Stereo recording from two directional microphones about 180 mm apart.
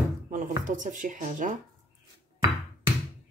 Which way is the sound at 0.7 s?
45° right (ahead or behind).